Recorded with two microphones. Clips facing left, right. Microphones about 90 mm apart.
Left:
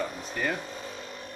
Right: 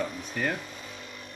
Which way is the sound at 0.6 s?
30° left (ahead or behind).